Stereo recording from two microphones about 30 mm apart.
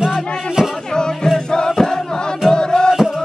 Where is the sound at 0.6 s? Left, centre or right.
Centre.